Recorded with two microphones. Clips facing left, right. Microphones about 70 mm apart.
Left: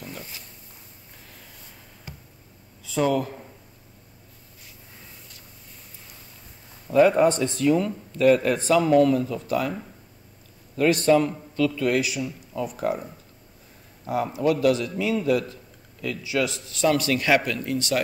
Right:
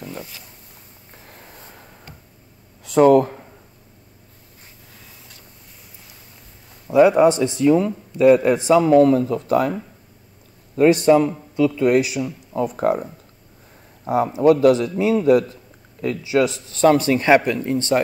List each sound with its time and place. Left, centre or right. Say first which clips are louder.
1.2 s vehicle: right 7 dB; right
3.0 s speech: right 10 dB; right
6.9 s speech: right 4 dB; centre
9.0 s a man's voice: right 5 dB; right
10.9 s a man's voice: right 4 dB; centre